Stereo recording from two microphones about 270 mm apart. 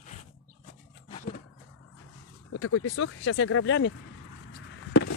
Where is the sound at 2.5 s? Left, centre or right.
Left.